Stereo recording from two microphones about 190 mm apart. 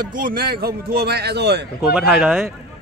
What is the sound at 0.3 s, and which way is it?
Speech, 50° right (ahead or behind).